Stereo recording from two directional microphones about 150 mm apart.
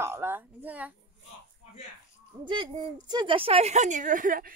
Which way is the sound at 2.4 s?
35° right (ahead or behind).